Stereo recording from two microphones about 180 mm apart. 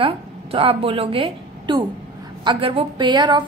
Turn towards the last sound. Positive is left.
turn(degrees=-25)  # may be behind; listen again after turning